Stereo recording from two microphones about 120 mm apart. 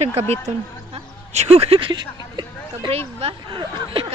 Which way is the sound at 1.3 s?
65° right (ahead or behind).